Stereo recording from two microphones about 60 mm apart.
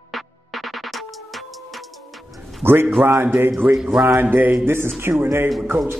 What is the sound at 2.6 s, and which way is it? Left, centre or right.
A man's voice, right.